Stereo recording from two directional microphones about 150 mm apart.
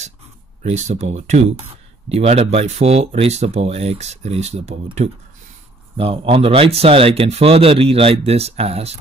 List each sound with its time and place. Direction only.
0.6 s speech: 50° right (ahead or behind)